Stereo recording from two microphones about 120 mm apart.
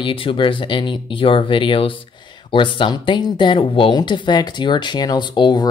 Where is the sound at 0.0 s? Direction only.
50° left (ahead or behind).